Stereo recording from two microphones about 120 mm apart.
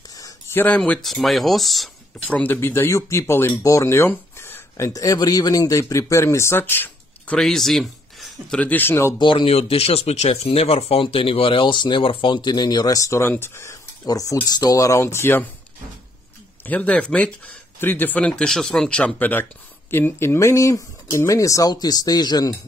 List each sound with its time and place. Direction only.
0.1 s a sound: 30° left (ahead or behind)
0.6 s speech: 10° left (ahead or behind)
2.3 s speech: 15° left (ahead or behind)
7.3 s speech: 5° left (ahead or behind)
8.5 s speech: 15° left (ahead or behind)
9.2 s speech: 45° left (ahead or behind); by 15.5 s 15° left (ahead or behind)
16.6 s speech: 10° left (ahead or behind); by 22.6 s 35° left (ahead or behind)